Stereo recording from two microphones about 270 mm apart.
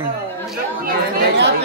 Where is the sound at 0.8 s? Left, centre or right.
Right.